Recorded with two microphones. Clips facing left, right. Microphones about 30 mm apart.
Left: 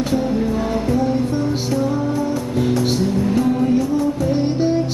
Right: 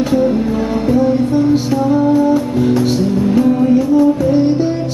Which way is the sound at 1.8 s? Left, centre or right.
Right.